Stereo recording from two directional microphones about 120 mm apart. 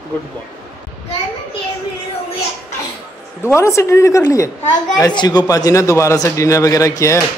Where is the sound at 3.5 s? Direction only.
25° left (ahead or behind).